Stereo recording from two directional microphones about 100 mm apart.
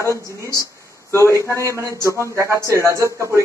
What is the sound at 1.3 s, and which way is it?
A man's voice, 30° right (ahead or behind).